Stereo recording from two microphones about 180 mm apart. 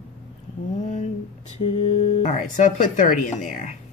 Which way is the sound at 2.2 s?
40° left (ahead or behind).